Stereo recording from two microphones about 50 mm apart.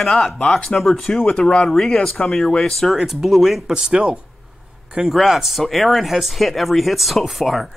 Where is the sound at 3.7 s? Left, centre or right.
Centre.